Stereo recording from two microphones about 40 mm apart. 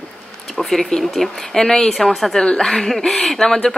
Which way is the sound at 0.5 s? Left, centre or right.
Centre.